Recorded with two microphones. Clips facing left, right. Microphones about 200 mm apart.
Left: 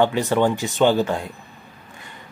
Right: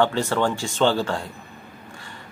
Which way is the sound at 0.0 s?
15° left (ahead or behind).